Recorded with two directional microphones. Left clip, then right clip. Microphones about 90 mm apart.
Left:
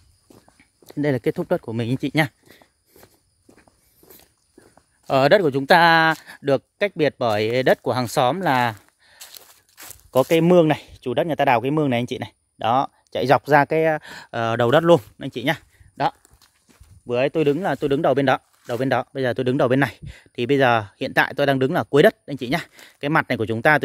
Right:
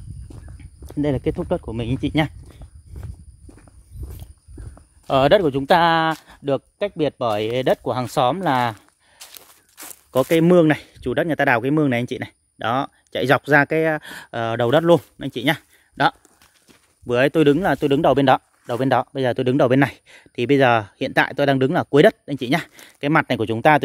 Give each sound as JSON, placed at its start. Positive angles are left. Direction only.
{"t": 0.3, "sound": "walk", "side_deg": 50}
{"t": 0.8, "sound": "speech", "side_deg": 45}
{"t": 3.0, "sound": "walk", "side_deg": 45}
{"t": 5.5, "sound": "speech", "side_deg": 55}
{"t": 6.2, "sound": "speech", "side_deg": 80}
{"t": 8.5, "sound": "speech", "side_deg": 30}
{"t": 9.1, "sound": "a sound", "side_deg": 40}
{"t": 10.1, "sound": "speech", "side_deg": 25}
{"t": 14.3, "sound": "speech", "side_deg": 45}
{"t": 15.1, "sound": "speech", "side_deg": 20}
{"t": 17.0, "sound": "speech", "side_deg": -20}
{"t": 17.6, "sound": "speech", "side_deg": 0}